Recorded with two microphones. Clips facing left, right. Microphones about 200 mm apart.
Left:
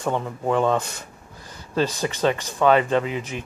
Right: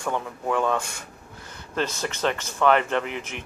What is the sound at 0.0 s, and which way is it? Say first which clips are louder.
Speech: left 3 dB; 20° left (ahead or behind).